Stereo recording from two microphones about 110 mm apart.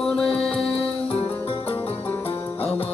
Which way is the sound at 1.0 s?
55° left (ahead or behind).